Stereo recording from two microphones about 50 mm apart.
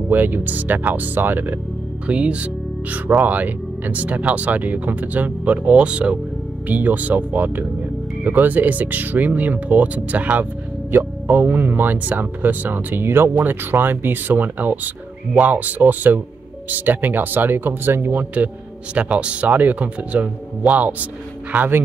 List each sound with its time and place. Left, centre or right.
0.1 s speech: right
2.0 s speech: right
6.7 s speech: right
11.2 s speech: right
13.3 s speech: right
18.1 s speech: right